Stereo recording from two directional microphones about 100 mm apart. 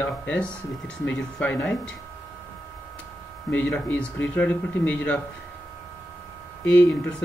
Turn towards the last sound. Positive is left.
turn(degrees=10)  # may be behind; listen again after turning